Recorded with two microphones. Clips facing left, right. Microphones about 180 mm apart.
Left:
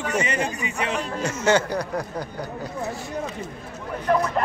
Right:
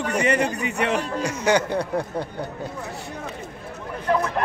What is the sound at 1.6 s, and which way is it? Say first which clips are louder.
Speech: right 2 dB; 30° right (ahead or behind).